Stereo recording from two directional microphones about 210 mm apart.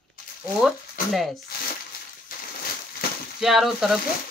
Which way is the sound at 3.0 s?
45° left (ahead or behind).